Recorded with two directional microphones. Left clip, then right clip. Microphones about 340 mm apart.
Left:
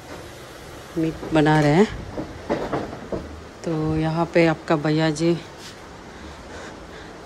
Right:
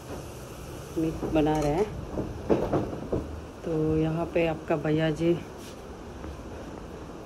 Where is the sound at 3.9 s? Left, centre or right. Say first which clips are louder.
Left 6 dB; left.